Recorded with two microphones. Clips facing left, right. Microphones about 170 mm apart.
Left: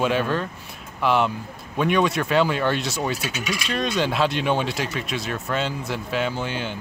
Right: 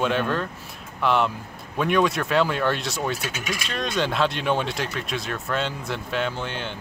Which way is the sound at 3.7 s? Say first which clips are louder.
Left 2 dB; centre (ahead or behind).